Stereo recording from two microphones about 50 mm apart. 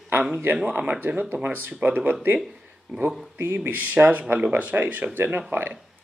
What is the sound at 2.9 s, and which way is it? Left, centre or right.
Speech, centre.